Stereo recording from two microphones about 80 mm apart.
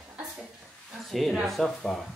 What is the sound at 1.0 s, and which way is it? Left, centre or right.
Speech, centre.